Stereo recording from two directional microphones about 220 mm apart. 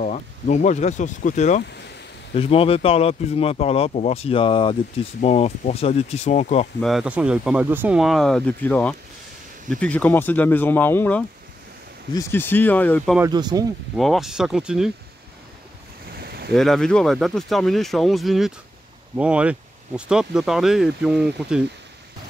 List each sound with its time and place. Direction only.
0.0 s speech: 35° left (ahead or behind)
6.8 s speech: centre (ahead or behind)
13.2 s speech: 20° right (ahead or behind)
13.9 s speech: centre (ahead or behind)
16.1 s boat: 45° right (ahead or behind)
16.5 s speech: centre (ahead or behind)